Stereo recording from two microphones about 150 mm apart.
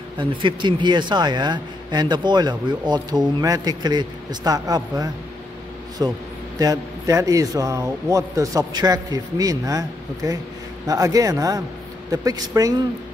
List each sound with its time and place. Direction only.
0.2 s speech: 35° right (ahead or behind)